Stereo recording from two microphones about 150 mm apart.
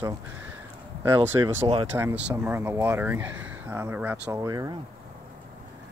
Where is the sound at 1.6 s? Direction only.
40° right (ahead or behind).